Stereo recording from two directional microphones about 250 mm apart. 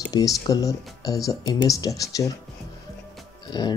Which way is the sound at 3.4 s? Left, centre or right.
Centre.